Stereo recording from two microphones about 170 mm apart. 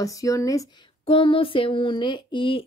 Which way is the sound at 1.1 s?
30° left (ahead or behind).